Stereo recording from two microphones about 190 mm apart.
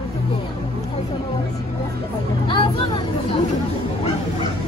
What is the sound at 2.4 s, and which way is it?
Vehicle, 25° left (ahead or behind).